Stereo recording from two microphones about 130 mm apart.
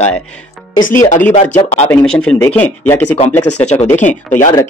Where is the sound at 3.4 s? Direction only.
60° left (ahead or behind).